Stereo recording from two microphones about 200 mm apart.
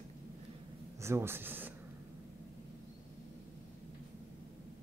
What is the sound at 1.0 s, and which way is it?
Speech, 10° right (ahead or behind).